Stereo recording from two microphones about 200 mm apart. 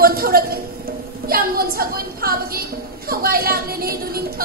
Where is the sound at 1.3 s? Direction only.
50° right (ahead or behind).